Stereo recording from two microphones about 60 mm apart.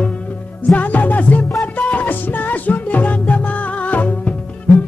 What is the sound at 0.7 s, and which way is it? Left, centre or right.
Music, left.